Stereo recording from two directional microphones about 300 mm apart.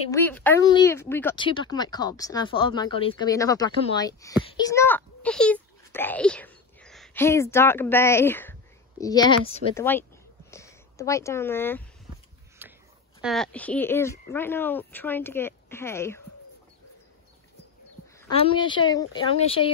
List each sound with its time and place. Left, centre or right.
0.1 s speech: centre
12.6 s a sound: centre
13.2 s speech: centre
18.3 s speech: centre